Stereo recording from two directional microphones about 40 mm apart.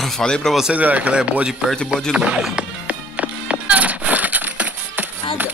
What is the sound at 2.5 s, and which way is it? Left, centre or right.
Music, right.